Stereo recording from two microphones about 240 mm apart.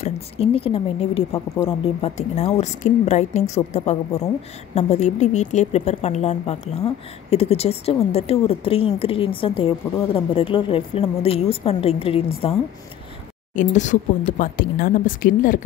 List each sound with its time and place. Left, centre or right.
0.0 s a woman's voice: left
13.6 s speech: left